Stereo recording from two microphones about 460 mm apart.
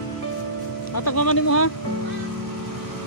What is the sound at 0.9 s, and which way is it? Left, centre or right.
Speech, left.